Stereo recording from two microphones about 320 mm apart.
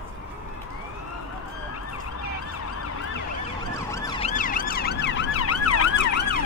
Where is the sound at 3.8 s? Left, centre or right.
Centre; by 6.1 s left.